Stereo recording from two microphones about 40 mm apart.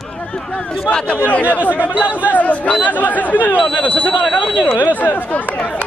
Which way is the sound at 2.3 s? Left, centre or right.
Left.